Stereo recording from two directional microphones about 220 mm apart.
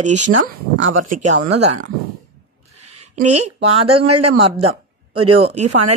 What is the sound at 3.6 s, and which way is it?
A woman's voice, 25° right (ahead or behind).